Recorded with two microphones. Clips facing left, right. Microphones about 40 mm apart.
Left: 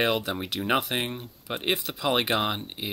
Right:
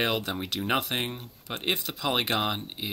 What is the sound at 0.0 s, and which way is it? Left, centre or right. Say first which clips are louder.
Speech: left 2 dB; centre.